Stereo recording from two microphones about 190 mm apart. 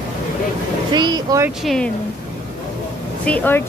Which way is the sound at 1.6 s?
Centre (ahead or behind).